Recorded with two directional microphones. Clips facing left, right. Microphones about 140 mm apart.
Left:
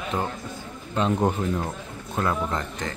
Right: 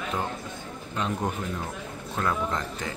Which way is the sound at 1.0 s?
30° left (ahead or behind).